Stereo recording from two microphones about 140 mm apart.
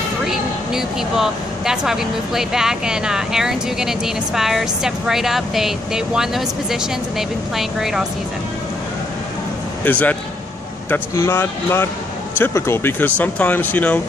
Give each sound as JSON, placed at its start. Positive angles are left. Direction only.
{"t": 0.3, "sound": "speech", "side_deg": -5}
{"t": 9.8, "sound": "speech", "side_deg": 10}